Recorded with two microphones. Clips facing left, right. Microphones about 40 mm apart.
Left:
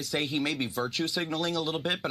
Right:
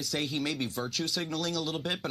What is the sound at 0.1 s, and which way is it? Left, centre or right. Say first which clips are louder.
Speech: left 3 dB; centre.